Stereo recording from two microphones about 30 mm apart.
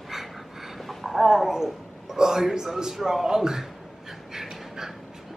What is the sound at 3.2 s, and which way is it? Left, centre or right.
Speech, right.